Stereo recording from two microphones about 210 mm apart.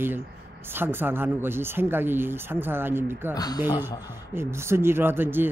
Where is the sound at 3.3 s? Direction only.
20° left (ahead or behind).